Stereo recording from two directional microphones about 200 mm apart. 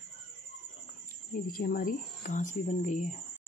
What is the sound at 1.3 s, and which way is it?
Speech, 45° left (ahead or behind).